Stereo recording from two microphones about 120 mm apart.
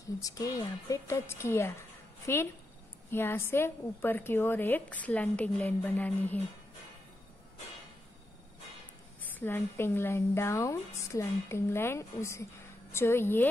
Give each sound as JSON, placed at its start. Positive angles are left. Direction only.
{"t": 0.2, "sound": "a woman's voice", "side_deg": 30}
{"t": 9.4, "sound": "a woman's voice", "side_deg": 20}